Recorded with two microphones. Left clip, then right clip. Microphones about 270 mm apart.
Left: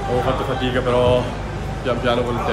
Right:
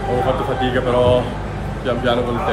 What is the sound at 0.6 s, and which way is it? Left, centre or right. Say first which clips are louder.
Speech: right 2 dB; centre.